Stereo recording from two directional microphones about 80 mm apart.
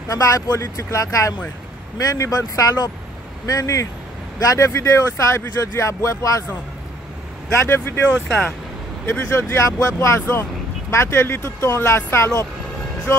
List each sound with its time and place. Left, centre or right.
0.1 s speech: left
7.5 s speech: left